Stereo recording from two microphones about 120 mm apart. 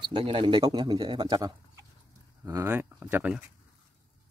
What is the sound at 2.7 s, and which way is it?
Speech, 15° right (ahead or behind).